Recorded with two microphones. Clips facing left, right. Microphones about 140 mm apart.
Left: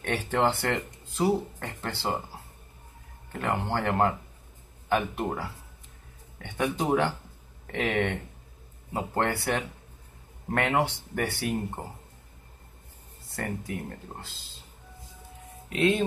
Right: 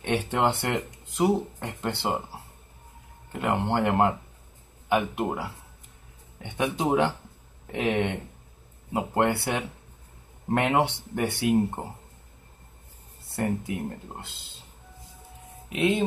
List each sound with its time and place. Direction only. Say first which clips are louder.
0.0 s speech: right 1 dB; 20° right (ahead or behind)
3.3 s speech: right 3 dB; 15° right (ahead or behind)
13.3 s speech: right 5 dB; 20° right (ahead or behind)
15.7 s speech: even; 15° right (ahead or behind)